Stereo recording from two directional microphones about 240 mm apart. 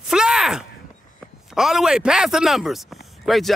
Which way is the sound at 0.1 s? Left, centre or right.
Centre.